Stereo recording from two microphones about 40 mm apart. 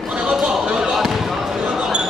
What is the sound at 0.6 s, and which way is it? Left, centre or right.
Basketball bounce, centre.